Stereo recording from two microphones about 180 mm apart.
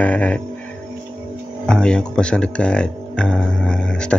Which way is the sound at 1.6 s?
5° left (ahead or behind).